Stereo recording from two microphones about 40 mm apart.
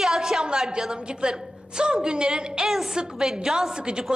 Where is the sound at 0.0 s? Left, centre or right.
Centre.